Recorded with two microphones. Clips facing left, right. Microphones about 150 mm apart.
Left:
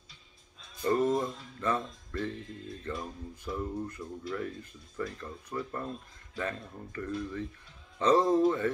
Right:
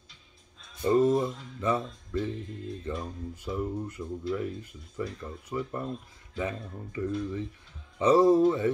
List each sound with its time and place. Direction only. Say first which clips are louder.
0.8 s speech: right 4 dB; 15° right (ahead or behind)